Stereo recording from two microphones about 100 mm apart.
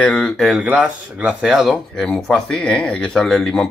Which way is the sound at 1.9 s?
10° left (ahead or behind).